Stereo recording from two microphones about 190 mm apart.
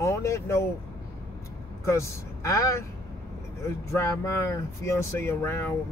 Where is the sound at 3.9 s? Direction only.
15° left (ahead or behind).